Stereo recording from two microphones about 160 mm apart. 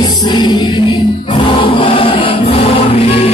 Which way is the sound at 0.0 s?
25° left (ahead or behind).